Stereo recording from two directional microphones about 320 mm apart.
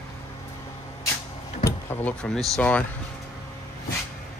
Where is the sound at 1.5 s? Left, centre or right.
Centre.